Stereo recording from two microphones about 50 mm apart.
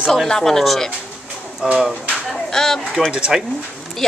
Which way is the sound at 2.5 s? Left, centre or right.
Centre.